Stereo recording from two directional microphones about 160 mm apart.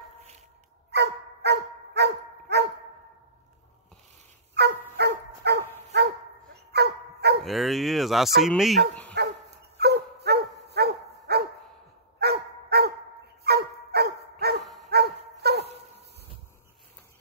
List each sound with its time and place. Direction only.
0.9 s dog: 90° right
4.6 s dog: 90° right
6.7 s dog: 90° right
7.4 s speech: centre (ahead or behind)
9.1 s dog: 90° right
14.6 s dog: centre (ahead or behind)
14.9 s dog: 90° right